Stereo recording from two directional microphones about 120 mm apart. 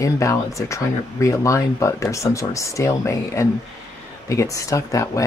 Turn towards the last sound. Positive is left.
turn(degrees=25)  # may be behind; listen again after turning